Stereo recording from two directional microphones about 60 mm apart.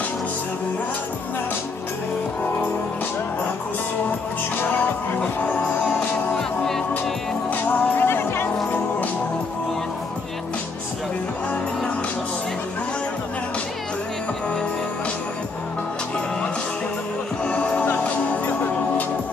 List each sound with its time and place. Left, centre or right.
5.2 s music: left
7.5 s music: left
17.5 s music: centre